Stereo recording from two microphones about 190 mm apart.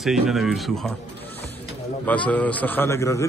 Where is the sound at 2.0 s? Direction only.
5° left (ahead or behind).